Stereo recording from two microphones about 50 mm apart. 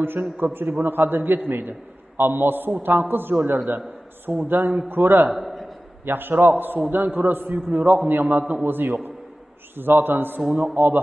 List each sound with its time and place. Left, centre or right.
0.4 s a man's voice: right
5.3 s a sound: centre
6.0 s a man's voice: right
8.6 s a man's voice: right